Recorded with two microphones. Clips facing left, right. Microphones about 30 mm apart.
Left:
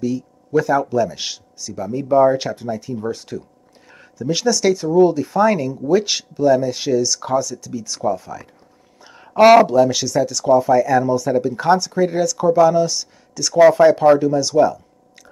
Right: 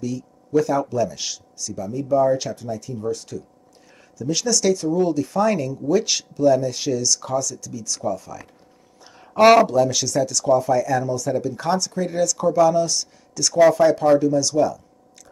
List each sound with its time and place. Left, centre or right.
0.0 s speech: centre
1.9 s speech: left